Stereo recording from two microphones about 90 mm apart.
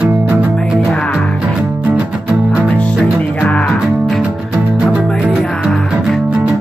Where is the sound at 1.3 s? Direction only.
10° right (ahead or behind).